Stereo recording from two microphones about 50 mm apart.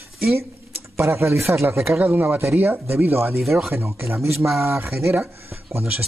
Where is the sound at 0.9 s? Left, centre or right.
Right.